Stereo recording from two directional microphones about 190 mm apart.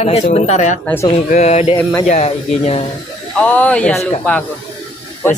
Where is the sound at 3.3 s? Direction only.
5° left (ahead or behind).